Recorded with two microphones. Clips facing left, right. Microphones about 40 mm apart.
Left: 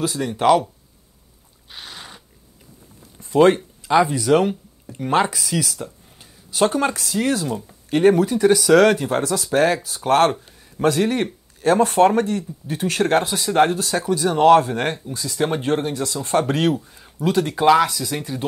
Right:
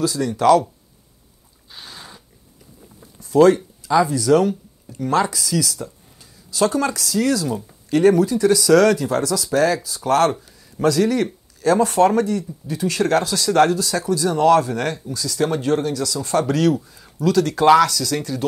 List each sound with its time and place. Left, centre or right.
0.0 s speech: left
1.7 s a sound: left
3.2 s speech: left
13.7 s speech: left